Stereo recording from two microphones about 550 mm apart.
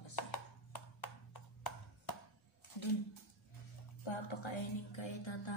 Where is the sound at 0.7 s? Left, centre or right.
Left.